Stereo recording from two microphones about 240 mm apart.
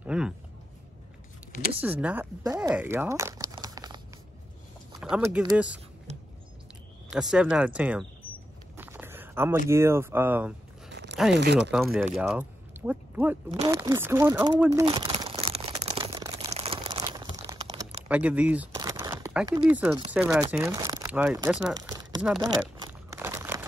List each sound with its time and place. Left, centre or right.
0.0 s a sound: centre
1.8 s speech: centre
5.0 s speech: centre
7.1 s speech: centre
8.7 s a sound: centre
9.7 s speech: centre
11.3 s speech: right
11.7 s speech: centre; by 15.7 s right
15.8 s crumpling: right
18.0 s speech: centre
18.8 s crumpling: centre
20.1 s speech: centre
21.7 s a sound: centre
23.1 s crumpling: centre